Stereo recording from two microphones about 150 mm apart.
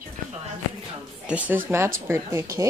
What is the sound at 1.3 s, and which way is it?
Speech, 15° right (ahead or behind).